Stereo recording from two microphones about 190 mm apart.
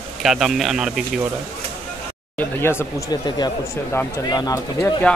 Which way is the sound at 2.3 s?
10° left (ahead or behind).